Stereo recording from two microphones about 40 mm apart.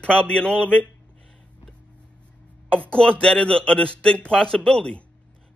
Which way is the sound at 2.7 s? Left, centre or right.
Left.